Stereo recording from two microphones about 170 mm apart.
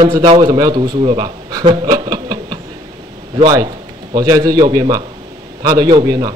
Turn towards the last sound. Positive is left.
turn(degrees=-25)  # may be behind; listen again after turning